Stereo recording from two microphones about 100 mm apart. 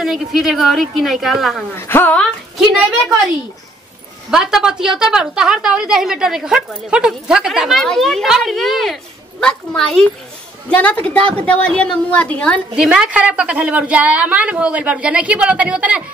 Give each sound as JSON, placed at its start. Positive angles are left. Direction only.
{"t": 0.0, "sound": "a woman's voice", "side_deg": -5}
{"t": 1.8, "sound": "speech", "side_deg": 25}
{"t": 4.3, "sound": "a woman's voice", "side_deg": -5}
{"t": 12.7, "sound": "a woman's voice", "side_deg": -5}